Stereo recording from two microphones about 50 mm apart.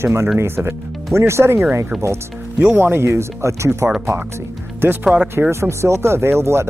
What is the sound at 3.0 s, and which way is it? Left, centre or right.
Speech, right.